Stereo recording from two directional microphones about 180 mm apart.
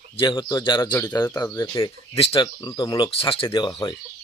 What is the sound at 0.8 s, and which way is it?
Speech, 10° left (ahead or behind).